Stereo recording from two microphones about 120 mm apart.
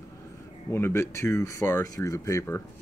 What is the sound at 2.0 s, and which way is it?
Speech, 25° left (ahead or behind).